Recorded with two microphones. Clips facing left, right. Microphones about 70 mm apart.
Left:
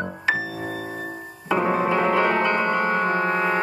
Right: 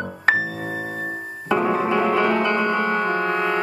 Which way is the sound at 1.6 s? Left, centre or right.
Left.